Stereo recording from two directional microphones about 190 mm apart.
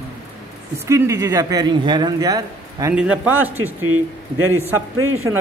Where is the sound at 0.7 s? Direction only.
15° right (ahead or behind).